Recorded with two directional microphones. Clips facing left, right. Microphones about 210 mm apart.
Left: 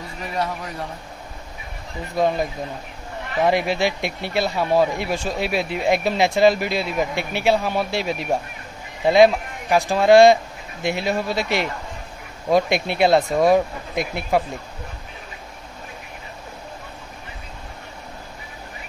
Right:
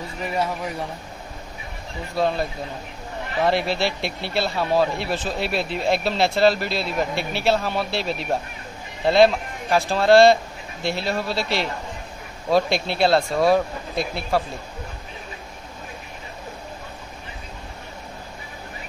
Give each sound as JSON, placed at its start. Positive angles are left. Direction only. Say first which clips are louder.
{"t": 2.1, "sound": "speech", "louder": "left 2 dB", "side_deg": 15}
{"t": 3.4, "sound": "speech", "louder": "left 2 dB", "side_deg": 15}